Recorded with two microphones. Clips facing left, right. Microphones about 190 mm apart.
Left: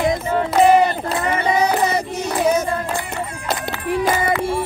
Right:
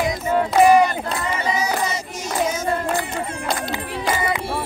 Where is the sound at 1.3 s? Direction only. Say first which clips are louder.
Left 6 dB; 60° left (ahead or behind).